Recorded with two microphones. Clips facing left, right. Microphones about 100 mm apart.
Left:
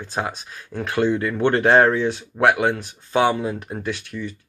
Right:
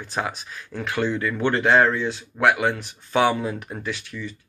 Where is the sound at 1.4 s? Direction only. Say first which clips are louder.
Left 3 dB; 50° left (ahead or behind).